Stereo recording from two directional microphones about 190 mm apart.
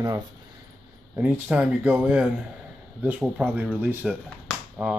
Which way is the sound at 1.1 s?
10° right (ahead or behind).